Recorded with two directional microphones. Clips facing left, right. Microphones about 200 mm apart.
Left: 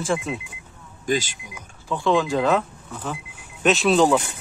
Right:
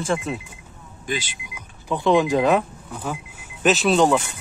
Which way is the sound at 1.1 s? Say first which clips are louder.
Left 5 dB; 45° left (ahead or behind).